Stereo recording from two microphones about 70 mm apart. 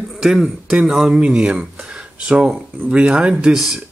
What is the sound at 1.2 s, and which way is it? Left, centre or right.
Speech, centre.